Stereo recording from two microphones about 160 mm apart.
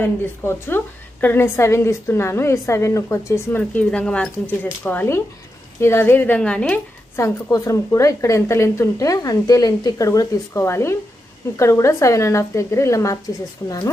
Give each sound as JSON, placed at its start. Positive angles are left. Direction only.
{"t": 0.0, "sound": "a woman's voice", "side_deg": 15}